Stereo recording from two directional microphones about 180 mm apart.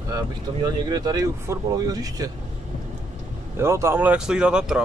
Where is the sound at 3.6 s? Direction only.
15° right (ahead or behind).